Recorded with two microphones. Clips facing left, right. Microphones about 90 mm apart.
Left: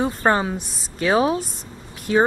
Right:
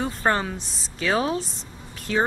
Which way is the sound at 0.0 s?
15° left (ahead or behind).